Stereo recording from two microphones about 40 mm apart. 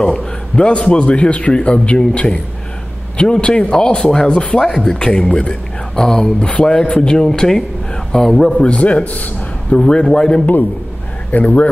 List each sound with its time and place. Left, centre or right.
0.0 s a man's voice: centre
3.8 s a man's voice: centre
4.9 s a man's voice: left; by 8.5 s centre
8.5 s a man's voice: left
9.8 s a man's voice: left
11.3 s speech: left